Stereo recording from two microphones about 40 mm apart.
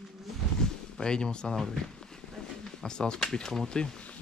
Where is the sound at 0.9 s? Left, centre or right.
Centre.